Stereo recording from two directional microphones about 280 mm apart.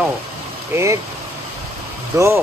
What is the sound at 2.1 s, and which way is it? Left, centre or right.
Speech, centre.